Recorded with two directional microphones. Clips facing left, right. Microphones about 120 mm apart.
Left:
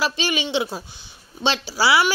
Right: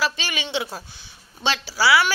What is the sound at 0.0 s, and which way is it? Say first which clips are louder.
Speech: left 3 dB; 20° left (ahead or behind).